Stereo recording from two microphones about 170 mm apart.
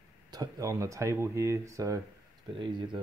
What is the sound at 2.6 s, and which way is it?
Speech, 30° right (ahead or behind).